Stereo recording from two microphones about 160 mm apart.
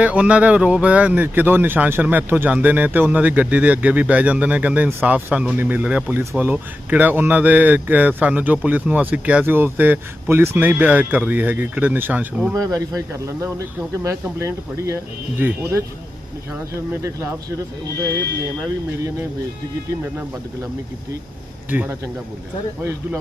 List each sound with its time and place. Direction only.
0.0 s a man's voice: 10° right (ahead or behind)
12.5 s speech: 20° right (ahead or behind)
17.0 s a man's voice: 15° right (ahead or behind)
18.4 s a man's voice: 15° right (ahead or behind)
21.6 s a man's voice: 10° right (ahead or behind)